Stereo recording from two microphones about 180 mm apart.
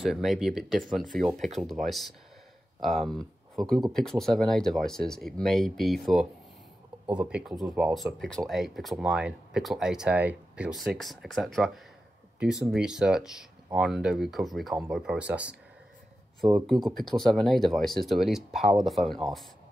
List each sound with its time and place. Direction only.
0.0 s speech: centre (ahead or behind)
16.4 s speech: 30° right (ahead or behind)
17.1 s speech: centre (ahead or behind)